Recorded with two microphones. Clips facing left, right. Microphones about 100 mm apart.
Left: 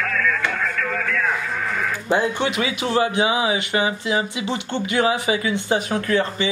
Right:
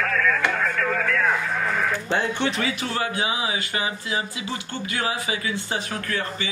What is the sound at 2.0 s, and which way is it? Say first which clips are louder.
Speech: left 3 dB; 10° left (ahead or behind).